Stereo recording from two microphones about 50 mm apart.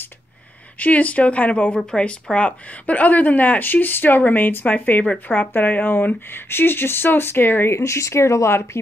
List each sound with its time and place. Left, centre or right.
0.7 s speech: left
1.9 s a woman's voice: centre; by 7.7 s left
7.7 s speech: left